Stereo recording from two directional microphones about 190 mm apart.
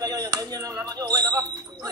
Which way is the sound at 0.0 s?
20° right (ahead or behind).